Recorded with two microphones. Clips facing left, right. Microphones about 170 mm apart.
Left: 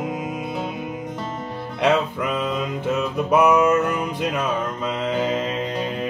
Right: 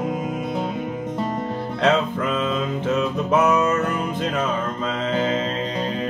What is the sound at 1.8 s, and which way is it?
Music, 10° left (ahead or behind).